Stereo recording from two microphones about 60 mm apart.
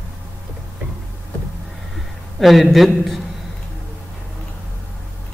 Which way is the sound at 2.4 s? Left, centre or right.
Centre.